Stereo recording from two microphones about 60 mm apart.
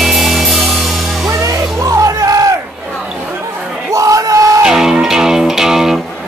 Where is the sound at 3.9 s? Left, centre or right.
Right.